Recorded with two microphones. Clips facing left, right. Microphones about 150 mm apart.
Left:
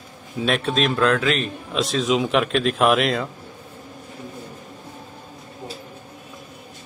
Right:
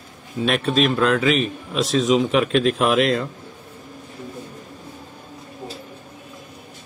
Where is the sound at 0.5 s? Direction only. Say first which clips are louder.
Right 2 dB; centre (ahead or behind).